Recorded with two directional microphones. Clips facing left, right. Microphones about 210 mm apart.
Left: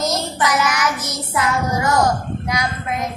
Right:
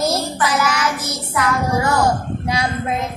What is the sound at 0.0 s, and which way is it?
Child singing, 30° right (ahead or behind).